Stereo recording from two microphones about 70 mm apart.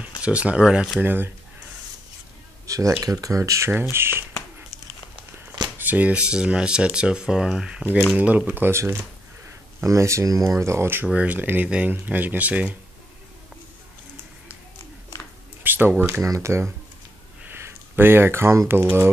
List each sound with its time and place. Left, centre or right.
0.0 s speech: centre
1.0 s speech: right
2.6 s a sound: right
3.0 s speech: right
3.9 s a sound: right
5.8 s speech: right
8.2 s speech: right
8.7 s speech: right
11.1 s speech: centre
15.6 s a sound: right
16.3 s speech: right
17.5 s a sound: right
18.7 s speech: right